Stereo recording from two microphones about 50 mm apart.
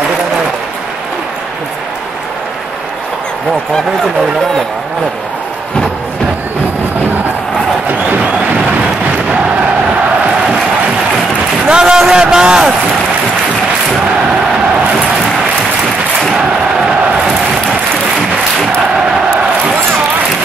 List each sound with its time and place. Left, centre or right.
8.1 s music: right
11.7 s a sound: centre
16.3 s crowd: centre